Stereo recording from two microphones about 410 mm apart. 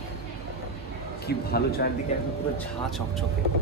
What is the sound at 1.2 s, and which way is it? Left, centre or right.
Speech, left.